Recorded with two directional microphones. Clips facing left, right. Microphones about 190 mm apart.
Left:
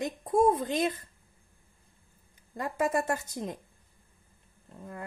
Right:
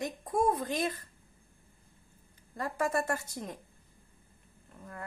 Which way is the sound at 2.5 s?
20° left (ahead or behind).